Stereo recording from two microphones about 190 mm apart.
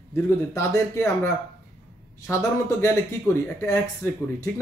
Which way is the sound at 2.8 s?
15° left (ahead or behind).